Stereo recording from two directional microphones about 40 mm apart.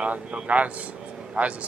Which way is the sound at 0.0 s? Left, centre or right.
Right.